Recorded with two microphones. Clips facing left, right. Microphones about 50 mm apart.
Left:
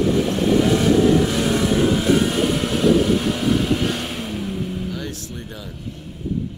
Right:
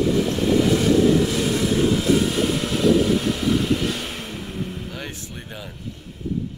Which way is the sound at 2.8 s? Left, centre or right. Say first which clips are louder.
Left 1 dB; left.